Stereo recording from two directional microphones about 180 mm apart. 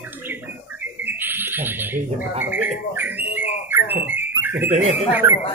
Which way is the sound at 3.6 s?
10° right (ahead or behind).